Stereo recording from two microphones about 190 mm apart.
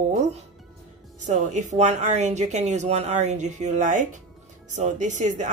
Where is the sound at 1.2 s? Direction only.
40° right (ahead or behind).